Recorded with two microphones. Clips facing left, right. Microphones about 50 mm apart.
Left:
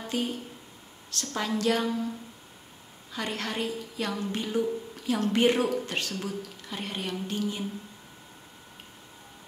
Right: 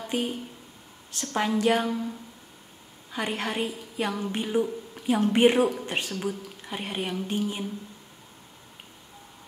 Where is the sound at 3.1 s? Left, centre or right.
Centre.